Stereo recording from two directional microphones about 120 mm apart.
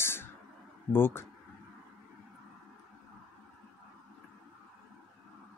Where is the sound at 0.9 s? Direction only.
20° left (ahead or behind).